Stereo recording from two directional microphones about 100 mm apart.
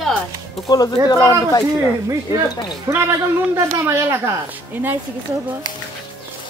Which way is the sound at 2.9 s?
35° right (ahead or behind).